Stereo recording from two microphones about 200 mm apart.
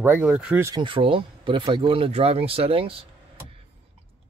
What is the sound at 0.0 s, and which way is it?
Speech, 10° right (ahead or behind).